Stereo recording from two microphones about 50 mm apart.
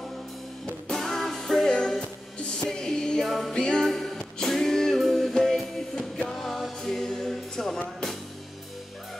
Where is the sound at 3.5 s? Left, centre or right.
Centre.